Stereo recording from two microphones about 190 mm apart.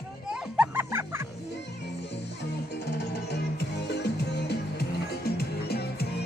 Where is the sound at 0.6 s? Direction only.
10° right (ahead or behind).